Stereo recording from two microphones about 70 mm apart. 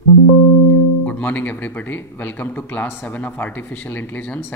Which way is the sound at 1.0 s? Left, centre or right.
Left.